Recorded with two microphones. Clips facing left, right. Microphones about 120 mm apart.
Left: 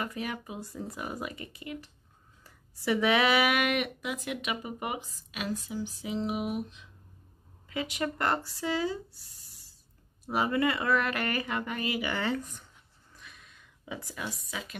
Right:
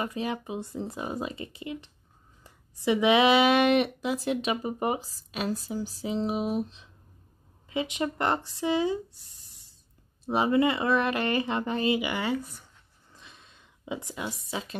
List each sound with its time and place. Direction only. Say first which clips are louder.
0.0 s speech: right 4 dB; 25° right (ahead or behind)
10.2 s speech: right 4 dB; 25° right (ahead or behind)
12.1 s speech: right 2 dB; 10° right (ahead or behind)
13.1 s a sound: right 1 dB; 25° right (ahead or behind)